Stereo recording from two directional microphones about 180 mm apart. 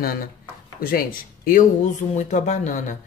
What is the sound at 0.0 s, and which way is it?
Speech, 55° left (ahead or behind).